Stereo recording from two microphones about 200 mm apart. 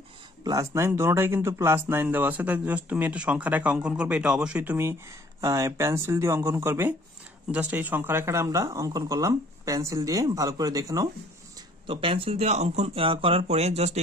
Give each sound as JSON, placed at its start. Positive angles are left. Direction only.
{"t": 0.4, "sound": "speech", "side_deg": -15}